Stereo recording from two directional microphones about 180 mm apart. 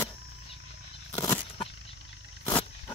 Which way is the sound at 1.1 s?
20° left (ahead or behind).